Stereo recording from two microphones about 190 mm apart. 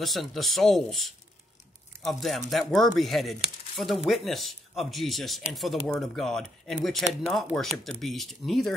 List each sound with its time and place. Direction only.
0.0 s speech: centre (ahead or behind)